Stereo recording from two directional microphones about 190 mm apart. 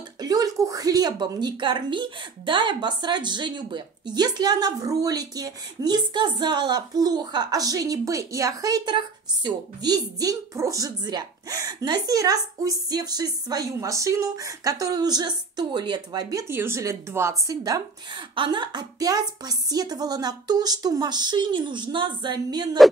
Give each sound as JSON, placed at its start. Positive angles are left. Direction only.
{"t": 0.2, "sound": "a woman's voice", "side_deg": -20}